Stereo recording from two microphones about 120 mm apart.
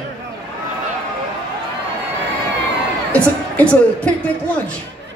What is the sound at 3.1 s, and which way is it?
Speech, 10° left (ahead or behind).